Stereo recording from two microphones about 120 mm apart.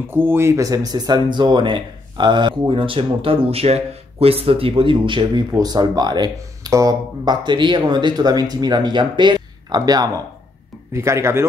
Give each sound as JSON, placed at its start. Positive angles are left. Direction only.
{"t": 0.1, "sound": "a man's voice", "side_deg": -20}